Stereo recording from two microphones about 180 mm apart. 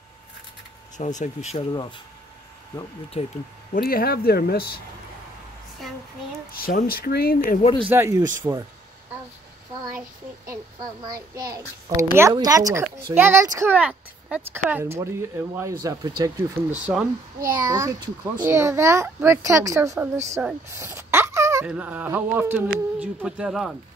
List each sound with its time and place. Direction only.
0.9 s speech: 40° left (ahead or behind)
1.7 s speech: 25° left (ahead or behind)
3.1 s speech: 35° left (ahead or behind)
3.7 s speech: 55° left (ahead or behind)
6.6 s speech: 50° left (ahead or behind)
7.9 s a child's voice: 15° right (ahead or behind)
9.9 s a child's voice: 15° right (ahead or behind)
16.7 s a child's voice: 5° right (ahead or behind)